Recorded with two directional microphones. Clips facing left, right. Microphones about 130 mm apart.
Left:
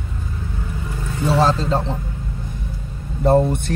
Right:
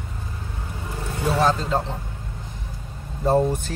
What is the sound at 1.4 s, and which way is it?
Speech, 30° left (ahead or behind).